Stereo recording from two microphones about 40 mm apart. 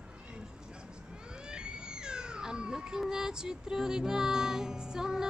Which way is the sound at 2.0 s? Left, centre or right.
Centre.